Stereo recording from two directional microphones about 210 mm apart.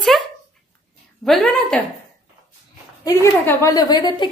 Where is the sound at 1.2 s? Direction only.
5° left (ahead or behind).